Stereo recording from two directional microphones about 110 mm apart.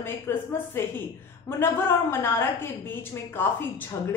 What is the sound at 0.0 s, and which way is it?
A woman's voice, 20° left (ahead or behind).